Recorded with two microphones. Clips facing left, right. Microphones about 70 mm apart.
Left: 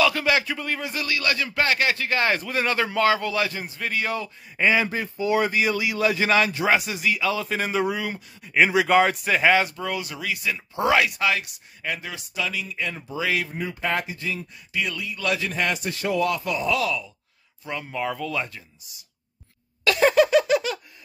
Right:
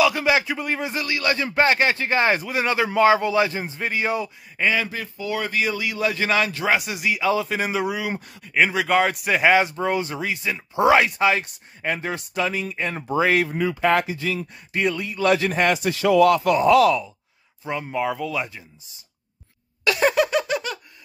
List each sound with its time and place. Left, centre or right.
0.0 s speech: centre
2.4 s speech: centre
4.6 s speech: centre
4.8 s speech: left; by 9.5 s centre
9.5 s speech: right
12.1 s speech: right
13.5 s speech: right
15.3 s speech: right
15.7 s speech: right
17.6 s speech: centre
19.8 s a sound: centre